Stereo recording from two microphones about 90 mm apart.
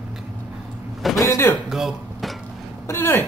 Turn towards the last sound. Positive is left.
turn(degrees=25)  # may be behind; listen again after turning